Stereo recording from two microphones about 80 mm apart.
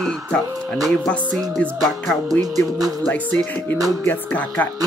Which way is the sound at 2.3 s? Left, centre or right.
Right.